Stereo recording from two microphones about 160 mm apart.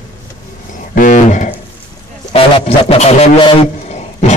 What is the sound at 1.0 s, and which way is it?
Speech, 50° left (ahead or behind).